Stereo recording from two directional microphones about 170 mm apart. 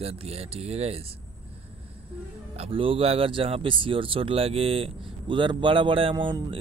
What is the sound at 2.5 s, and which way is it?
Speech, 35° right (ahead or behind).